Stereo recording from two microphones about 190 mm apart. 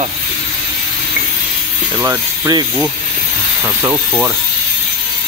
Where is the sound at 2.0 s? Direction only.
15° right (ahead or behind).